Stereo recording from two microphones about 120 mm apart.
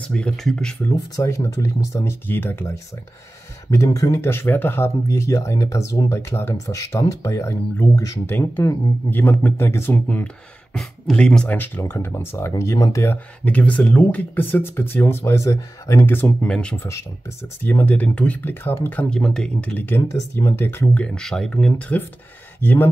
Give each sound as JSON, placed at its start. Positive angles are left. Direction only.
{"t": 0.1, "sound": "speech", "side_deg": 5}
{"t": 0.8, "sound": "speech", "side_deg": 25}
{"t": 3.7, "sound": "speech", "side_deg": 30}
{"t": 13.5, "sound": "speech", "side_deg": 10}